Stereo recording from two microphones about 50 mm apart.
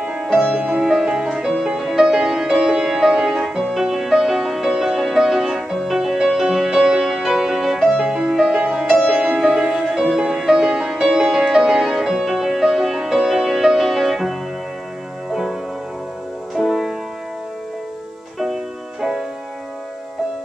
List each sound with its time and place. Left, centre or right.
0.2 s music: centre
8.0 s music: centre
8.6 s music: centre
16.5 s music: centre
18.4 s music: centre